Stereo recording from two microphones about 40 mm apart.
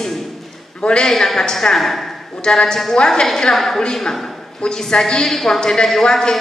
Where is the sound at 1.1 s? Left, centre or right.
Centre.